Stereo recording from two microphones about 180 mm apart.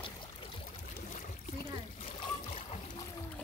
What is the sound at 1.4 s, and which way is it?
Splash, 40° left (ahead or behind).